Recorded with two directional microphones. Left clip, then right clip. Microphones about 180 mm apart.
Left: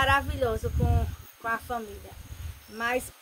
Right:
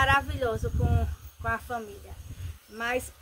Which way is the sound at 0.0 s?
10° right (ahead or behind).